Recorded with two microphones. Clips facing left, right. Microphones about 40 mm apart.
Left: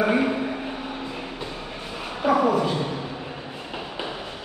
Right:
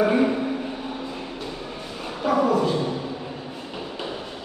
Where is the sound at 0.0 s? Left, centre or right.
Centre.